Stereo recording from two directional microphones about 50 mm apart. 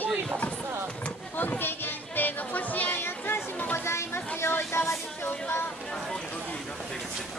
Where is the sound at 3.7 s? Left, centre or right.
Left.